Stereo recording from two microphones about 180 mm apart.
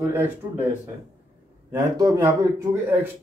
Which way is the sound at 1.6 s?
20° right (ahead or behind).